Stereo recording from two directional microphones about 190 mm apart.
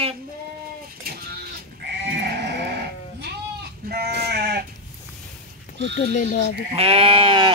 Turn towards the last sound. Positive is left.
turn(degrees=-25)  # may be behind; listen again after turning